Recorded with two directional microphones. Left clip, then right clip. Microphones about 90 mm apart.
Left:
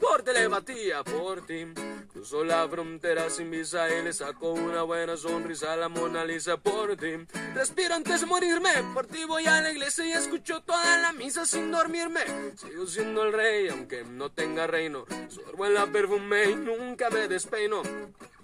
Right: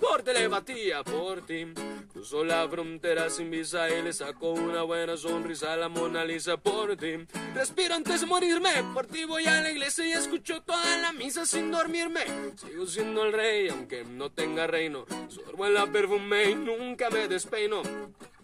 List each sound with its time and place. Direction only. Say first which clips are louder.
0.0 s speech: left 2 dB; 10° left (ahead or behind)
9.2 s music: left 2 dB; 10° left (ahead or behind)
10.3 s speech: left 2 dB; 10° left (ahead or behind)
16.6 s speech: even; 25° left (ahead or behind)
17.0 s speech: left 1 dB; 10° left (ahead or behind)